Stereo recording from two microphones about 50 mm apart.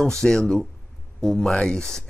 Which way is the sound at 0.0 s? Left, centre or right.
Centre.